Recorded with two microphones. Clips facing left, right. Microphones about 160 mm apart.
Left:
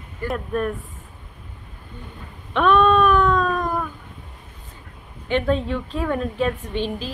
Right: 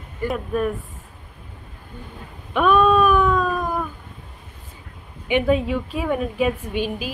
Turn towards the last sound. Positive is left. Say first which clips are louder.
# right 1 dB
turn(degrees=-10)  # may be behind; listen again after turning